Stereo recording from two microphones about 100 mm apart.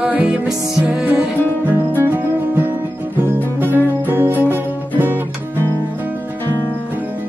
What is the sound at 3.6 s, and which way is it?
Guitar, 20° right (ahead or behind).